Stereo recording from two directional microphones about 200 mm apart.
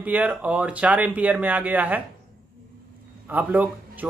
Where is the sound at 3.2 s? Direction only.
10° right (ahead or behind).